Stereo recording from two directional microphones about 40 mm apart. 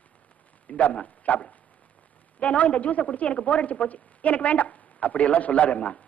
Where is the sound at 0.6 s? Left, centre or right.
Left.